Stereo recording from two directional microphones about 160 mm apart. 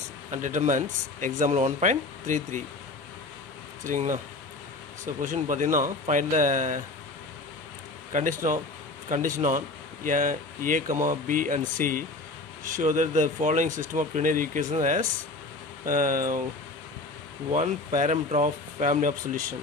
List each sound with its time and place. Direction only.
0.3 s speech: 50° right (ahead or behind)
3.8 s speech: 55° right (ahead or behind)
5.2 s speech: 55° right (ahead or behind)
8.1 s speech: 55° right (ahead or behind)
17.5 s speech: 50° right (ahead or behind)